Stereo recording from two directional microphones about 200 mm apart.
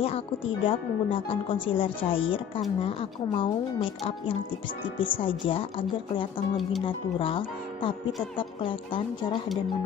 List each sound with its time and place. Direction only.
0.0 s speech: 25° left (ahead or behind)